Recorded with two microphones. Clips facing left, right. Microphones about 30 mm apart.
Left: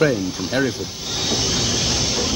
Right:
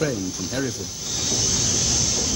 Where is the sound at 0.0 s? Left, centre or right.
Left.